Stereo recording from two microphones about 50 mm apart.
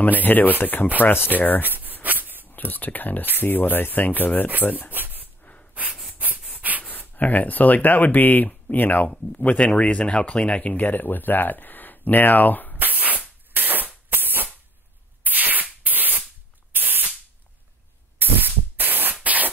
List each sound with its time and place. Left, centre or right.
0.0 s speech: left
1.6 s a sound: right
2.5 s speech: left
4.9 s a sound: right
5.4 s snort: left
6.1 s a sound: right
6.8 s speech: left
9.3 s speech: left
12.7 s spray: right
13.5 s a sound: right
15.2 s spray: right
18.2 s static: right
19.2 s spray: right